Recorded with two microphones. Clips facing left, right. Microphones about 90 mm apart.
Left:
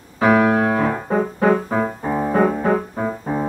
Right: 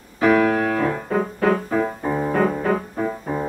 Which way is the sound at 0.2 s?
30° left (ahead or behind).